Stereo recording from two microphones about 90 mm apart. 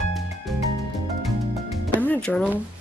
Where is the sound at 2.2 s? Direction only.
10° left (ahead or behind).